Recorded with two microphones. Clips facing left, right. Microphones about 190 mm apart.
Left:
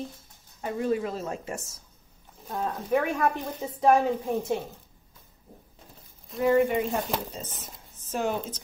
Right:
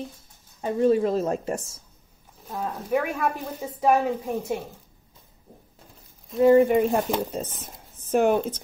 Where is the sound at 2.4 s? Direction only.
Centre (ahead or behind).